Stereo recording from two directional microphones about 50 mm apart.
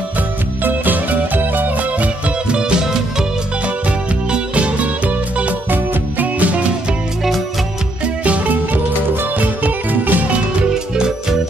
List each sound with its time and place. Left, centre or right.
0.7 s music: right; by 2.9 s centre
4.3 s music: right
8.0 s music: right